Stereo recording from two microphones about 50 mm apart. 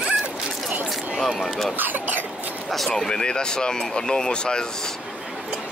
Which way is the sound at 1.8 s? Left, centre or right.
Right.